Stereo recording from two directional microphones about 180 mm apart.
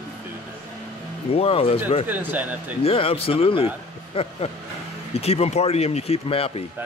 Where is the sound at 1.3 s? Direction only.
30° left (ahead or behind).